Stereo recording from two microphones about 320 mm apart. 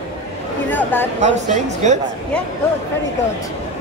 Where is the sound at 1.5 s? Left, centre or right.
Right.